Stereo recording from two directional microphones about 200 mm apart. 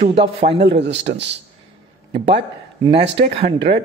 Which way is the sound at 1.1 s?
60° right (ahead or behind).